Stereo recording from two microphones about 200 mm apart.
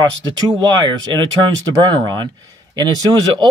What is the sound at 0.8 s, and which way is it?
Speech, 20° right (ahead or behind).